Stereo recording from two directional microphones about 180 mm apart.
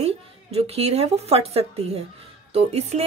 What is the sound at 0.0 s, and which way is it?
A woman's voice, 35° right (ahead or behind).